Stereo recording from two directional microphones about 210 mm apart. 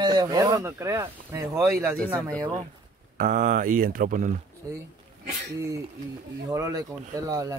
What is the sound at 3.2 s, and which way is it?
Speech, 35° right (ahead or behind).